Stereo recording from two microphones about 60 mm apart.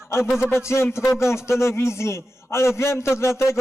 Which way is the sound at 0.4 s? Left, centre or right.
Left.